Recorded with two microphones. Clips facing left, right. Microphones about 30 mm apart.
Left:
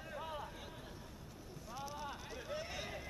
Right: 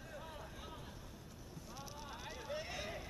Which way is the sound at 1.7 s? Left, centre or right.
Centre.